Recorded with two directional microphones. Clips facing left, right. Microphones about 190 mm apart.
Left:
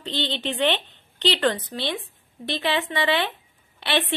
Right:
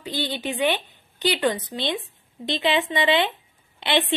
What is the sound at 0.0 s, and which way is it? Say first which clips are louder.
A woman's voice: even; 10° right (ahead or behind).